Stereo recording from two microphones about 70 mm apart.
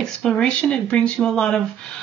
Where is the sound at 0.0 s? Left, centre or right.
Centre.